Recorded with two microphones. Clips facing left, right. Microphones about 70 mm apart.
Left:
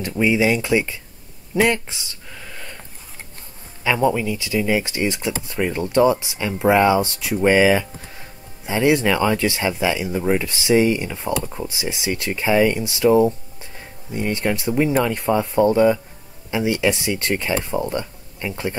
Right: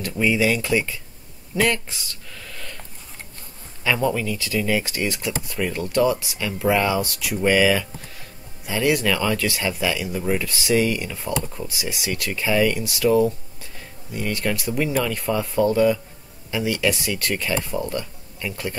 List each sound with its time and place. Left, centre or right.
0.1 s speech: centre
1.5 s a sound: left
3.8 s speech: centre